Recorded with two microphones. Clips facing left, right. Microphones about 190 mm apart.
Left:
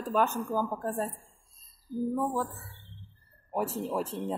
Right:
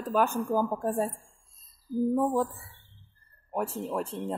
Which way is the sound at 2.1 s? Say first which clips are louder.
Right 5 dB; 20° right (ahead or behind).